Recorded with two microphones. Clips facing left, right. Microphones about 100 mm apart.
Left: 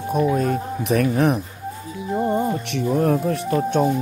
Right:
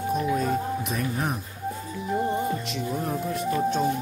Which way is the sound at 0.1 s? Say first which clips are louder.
Left 6 dB; 50° left (ahead or behind).